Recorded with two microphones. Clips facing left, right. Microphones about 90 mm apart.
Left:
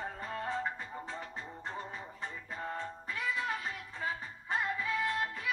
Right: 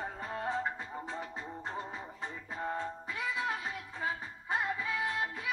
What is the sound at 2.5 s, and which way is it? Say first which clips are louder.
Music: right 4 dB; 15° right (ahead or behind).